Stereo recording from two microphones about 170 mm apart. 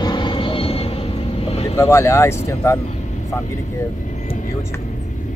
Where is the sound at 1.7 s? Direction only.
15° left (ahead or behind).